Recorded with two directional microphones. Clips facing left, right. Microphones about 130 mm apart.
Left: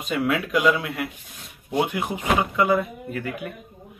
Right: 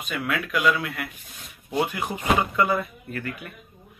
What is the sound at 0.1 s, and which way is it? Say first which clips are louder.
Speech: left 5 dB; 20° left (ahead or behind).